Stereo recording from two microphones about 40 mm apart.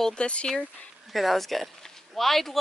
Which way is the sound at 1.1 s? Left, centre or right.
Centre.